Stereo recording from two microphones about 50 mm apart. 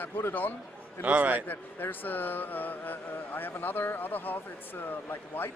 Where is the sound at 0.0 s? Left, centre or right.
Left.